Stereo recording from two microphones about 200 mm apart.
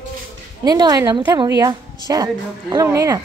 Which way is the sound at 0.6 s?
20° right (ahead or behind).